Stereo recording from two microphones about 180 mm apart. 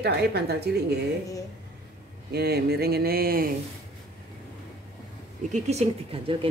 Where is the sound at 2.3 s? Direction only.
60° right (ahead or behind).